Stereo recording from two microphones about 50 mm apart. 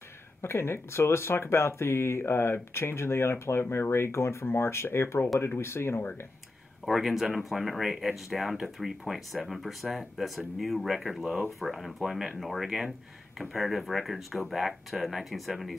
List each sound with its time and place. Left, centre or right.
0.4 s speech: left
6.9 s speech: centre
13.4 s speech: centre